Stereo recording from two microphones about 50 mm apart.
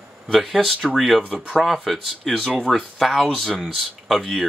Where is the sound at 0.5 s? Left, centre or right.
Centre.